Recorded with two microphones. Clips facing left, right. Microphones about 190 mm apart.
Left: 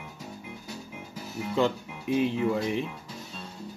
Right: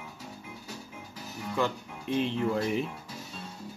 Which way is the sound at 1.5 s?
15° left (ahead or behind).